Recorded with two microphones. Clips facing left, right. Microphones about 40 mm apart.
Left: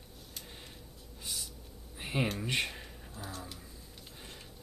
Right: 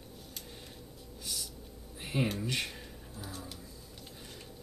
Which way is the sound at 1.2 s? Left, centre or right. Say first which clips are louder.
Even; centre.